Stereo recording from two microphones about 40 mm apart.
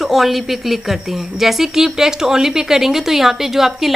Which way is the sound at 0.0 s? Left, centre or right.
Centre.